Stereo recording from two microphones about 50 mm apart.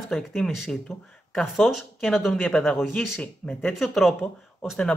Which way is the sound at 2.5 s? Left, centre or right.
Centre.